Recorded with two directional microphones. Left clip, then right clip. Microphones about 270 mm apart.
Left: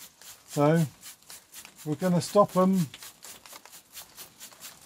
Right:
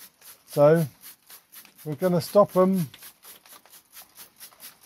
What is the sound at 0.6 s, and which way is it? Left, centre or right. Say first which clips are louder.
Speech: right 7 dB; right.